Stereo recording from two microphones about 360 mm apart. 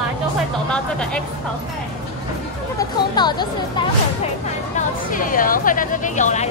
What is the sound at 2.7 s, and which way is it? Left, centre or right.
Speech, centre.